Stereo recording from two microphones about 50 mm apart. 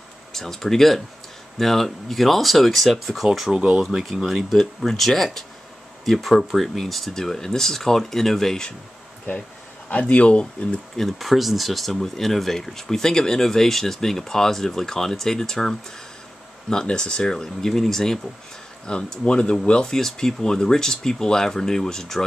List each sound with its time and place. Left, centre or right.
0.3 s speech: centre
3.8 s speech: centre
9.8 s speech: left
11.0 s speech: centre
16.8 s speech: centre
18.9 s speech: centre